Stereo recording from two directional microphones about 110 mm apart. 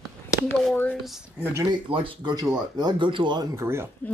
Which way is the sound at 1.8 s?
50° right (ahead or behind).